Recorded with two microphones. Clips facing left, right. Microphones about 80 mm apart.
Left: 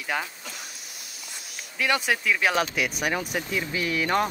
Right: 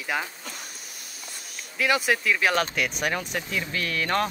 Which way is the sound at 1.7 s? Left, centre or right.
Centre.